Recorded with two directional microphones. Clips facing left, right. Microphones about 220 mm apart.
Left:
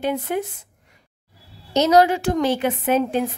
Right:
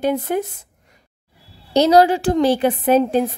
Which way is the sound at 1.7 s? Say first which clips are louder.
Right 3 dB; 35° right (ahead or behind).